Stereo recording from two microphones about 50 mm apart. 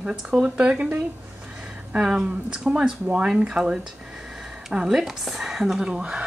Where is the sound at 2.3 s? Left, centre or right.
Centre.